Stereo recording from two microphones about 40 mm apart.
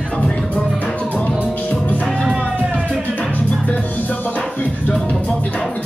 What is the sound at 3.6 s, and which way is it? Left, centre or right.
Music, left.